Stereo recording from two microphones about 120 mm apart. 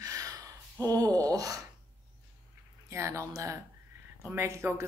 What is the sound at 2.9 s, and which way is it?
Speech, 25° right (ahead or behind).